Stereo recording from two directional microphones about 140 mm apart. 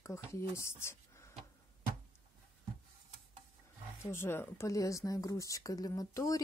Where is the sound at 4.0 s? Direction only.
15° left (ahead or behind).